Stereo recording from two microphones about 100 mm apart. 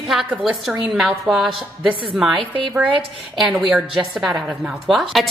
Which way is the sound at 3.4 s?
Centre (ahead or behind).